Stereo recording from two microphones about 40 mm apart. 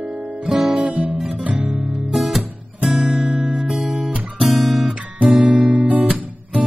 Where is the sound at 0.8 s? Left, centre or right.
Right.